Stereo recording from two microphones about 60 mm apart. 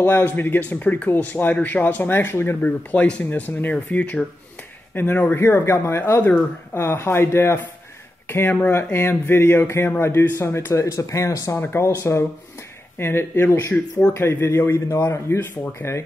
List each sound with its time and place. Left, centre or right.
0.0 s speech: left
2.9 s speech: left
6.7 s speech: left
11.5 s speech: left
11.8 s speech: left
12.9 s speech: left
14.1 s speech: left
15.0 s speech: left